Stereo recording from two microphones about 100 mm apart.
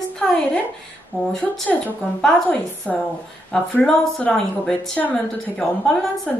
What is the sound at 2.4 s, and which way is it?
A woman's voice, 15° left (ahead or behind).